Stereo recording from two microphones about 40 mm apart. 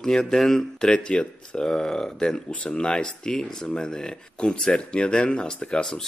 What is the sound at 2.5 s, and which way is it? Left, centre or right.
Speech, left.